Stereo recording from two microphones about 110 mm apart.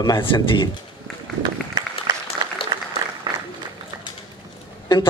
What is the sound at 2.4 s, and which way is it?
Applause, 35° right (ahead or behind).